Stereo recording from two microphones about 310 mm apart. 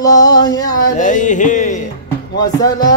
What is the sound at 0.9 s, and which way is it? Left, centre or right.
Music, left.